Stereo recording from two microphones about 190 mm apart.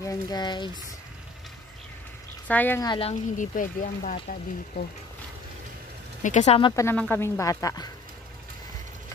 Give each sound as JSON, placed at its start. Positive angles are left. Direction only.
{"t": 0.0, "sound": "speech", "side_deg": 20}
{"t": 2.4, "sound": "speech", "side_deg": 10}
{"t": 2.9, "sound": "speech", "side_deg": 30}
{"t": 6.2, "sound": "speech", "side_deg": 35}
{"t": 6.7, "sound": "speech", "side_deg": 15}